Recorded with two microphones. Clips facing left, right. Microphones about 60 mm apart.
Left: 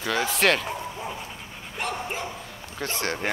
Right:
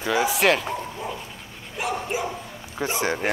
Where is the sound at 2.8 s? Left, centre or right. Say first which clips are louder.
Right 4 dB; centre.